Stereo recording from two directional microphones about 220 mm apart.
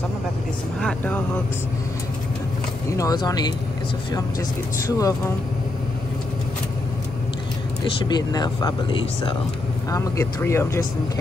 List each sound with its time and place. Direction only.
0.7 s speech: 5° left (ahead or behind)
2.9 s speech: 15° left (ahead or behind)
4.8 s speech: 15° left (ahead or behind)
7.8 s speech: 20° left (ahead or behind)